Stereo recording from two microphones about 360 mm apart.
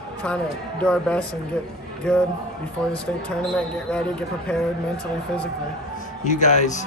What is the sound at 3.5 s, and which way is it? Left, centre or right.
Speech, centre.